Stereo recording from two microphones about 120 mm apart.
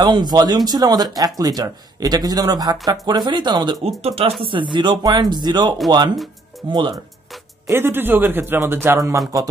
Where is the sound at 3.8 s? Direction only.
55° right (ahead or behind); by 7.0 s 40° right (ahead or behind).